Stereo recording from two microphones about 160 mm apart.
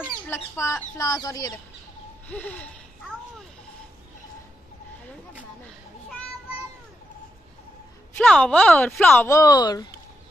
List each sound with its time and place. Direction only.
0.6 s speech: 20° left (ahead or behind)
2.2 s speech: 10° left (ahead or behind)
8.2 s speech: 5° left (ahead or behind); by 9.8 s 25° left (ahead or behind)